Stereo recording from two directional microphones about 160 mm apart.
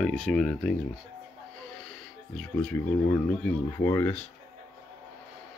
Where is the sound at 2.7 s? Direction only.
15° left (ahead or behind).